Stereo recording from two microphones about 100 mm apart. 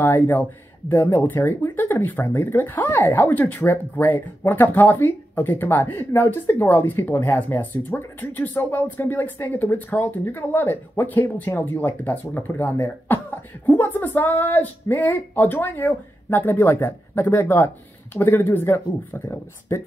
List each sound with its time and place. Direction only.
0.0 s speech: 20° left (ahead or behind)